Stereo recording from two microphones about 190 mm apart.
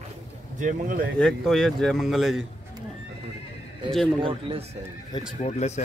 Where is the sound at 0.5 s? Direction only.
45° right (ahead or behind).